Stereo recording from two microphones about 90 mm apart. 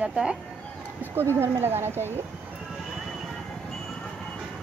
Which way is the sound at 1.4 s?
25° right (ahead or behind).